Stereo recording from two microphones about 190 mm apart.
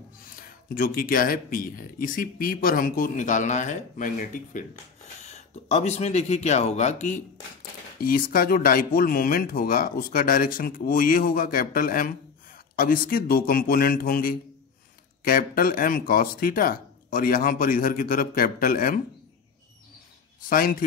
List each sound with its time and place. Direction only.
0.4 s speech: 50° left (ahead or behind)
8.0 s speech: 50° left (ahead or behind)
20.4 s speech: 50° left (ahead or behind)